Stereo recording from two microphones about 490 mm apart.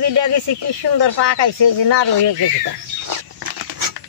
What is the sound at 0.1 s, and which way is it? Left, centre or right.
Speech, right.